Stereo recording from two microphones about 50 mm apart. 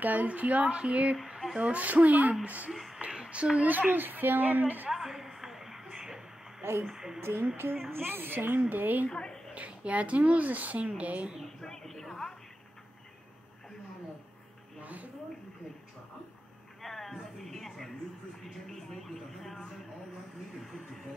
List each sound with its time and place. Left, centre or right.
0.0 s a woman's voice: right
2.7 s speech: centre
3.1 s a sound: right
3.5 s a woman's voice: right
4.8 s music: centre
6.9 s a woman's voice: centre
7.2 s a woman's voice: right
9.1 s a woman's voice: centre
9.5 s speech: right
11.4 s a sound: centre
14.8 s a sound: right
16.8 s a sound: centre